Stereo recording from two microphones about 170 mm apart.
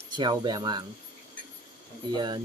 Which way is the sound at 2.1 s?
25° right (ahead or behind).